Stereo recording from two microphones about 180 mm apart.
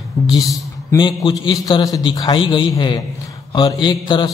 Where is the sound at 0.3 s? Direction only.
25° left (ahead or behind).